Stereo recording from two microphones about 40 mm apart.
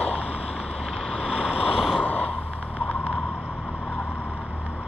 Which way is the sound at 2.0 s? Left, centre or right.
Left.